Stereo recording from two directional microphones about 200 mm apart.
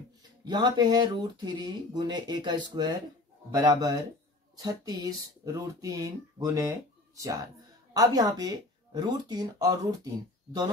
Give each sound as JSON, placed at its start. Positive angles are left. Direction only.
{"t": 0.5, "sound": "speech", "side_deg": -20}